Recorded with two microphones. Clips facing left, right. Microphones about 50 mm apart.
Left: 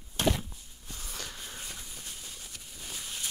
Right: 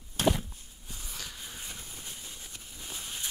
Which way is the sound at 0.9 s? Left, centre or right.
Centre.